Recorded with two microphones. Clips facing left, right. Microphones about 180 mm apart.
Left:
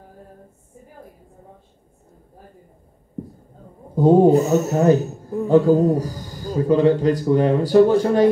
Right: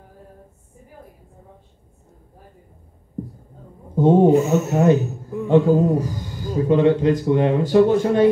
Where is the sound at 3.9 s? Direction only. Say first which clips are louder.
Left 1 dB; 35° left (ahead or behind).